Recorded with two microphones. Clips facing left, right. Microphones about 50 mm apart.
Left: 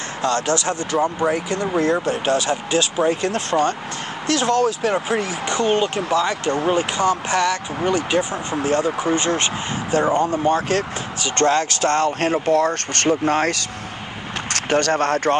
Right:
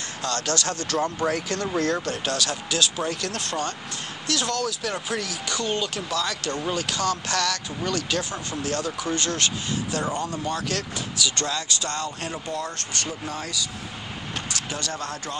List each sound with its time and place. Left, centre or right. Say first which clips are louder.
0.2 s speech: left 7 dB; left